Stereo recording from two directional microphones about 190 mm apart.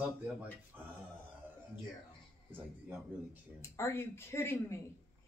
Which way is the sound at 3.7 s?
15° left (ahead or behind).